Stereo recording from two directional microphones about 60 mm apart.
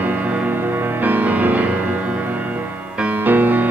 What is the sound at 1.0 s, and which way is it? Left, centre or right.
Music, right.